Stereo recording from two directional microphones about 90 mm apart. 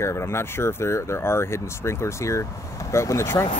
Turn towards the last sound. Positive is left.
turn(degrees=30)  # may be behind; listen again after turning